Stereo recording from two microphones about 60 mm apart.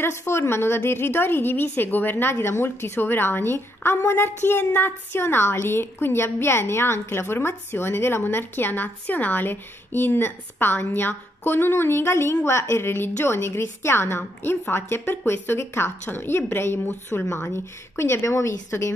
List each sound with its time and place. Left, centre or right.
0.0 s a woman's voice: left